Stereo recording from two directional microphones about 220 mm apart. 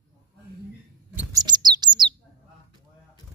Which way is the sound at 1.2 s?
15° right (ahead or behind).